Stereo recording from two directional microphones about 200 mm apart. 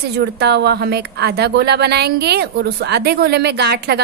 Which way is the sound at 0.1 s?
55° right (ahead or behind).